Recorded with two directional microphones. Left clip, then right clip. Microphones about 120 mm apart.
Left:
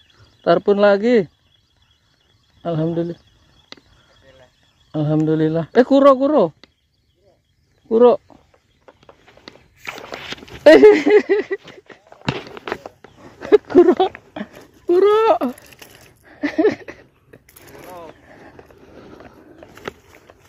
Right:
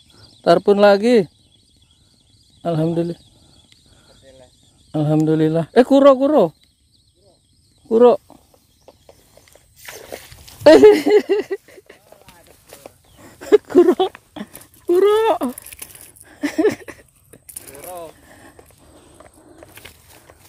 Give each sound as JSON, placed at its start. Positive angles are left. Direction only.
{"t": 0.4, "sound": "speech", "side_deg": -30}
{"t": 2.8, "sound": "speech", "side_deg": -25}
{"t": 4.9, "sound": "speech", "side_deg": -25}
{"t": 7.9, "sound": "speech", "side_deg": -25}
{"t": 10.6, "sound": "speech", "side_deg": -10}
{"t": 13.2, "sound": "a sound", "side_deg": -15}